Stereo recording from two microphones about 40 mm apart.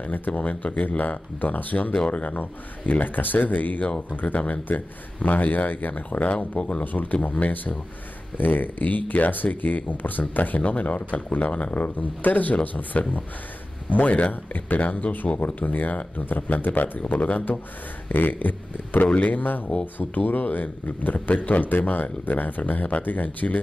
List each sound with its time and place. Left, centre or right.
0.0 s speech: left
2.9 s speech: left
6.5 s speech: left
6.8 s speech: left
10.6 s speech: left